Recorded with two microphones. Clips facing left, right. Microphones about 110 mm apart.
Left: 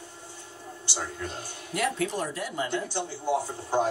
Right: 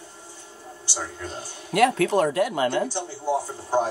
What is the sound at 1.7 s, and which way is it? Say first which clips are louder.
Speech: right 9 dB; 65° right (ahead or behind).